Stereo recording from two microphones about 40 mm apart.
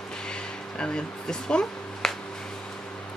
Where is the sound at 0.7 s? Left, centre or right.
Left.